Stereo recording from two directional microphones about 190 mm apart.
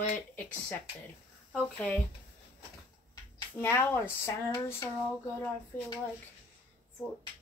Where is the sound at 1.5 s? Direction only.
10° left (ahead or behind).